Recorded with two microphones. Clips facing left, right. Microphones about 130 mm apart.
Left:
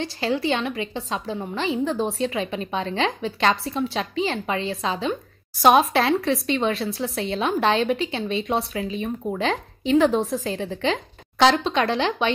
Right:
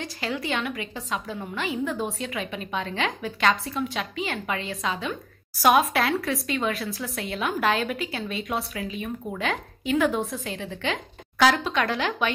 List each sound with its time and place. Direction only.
0.0 s a woman's voice: 30° left (ahead or behind)